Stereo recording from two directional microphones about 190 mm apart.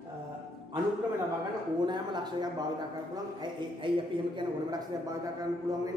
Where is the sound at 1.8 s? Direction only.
20° right (ahead or behind).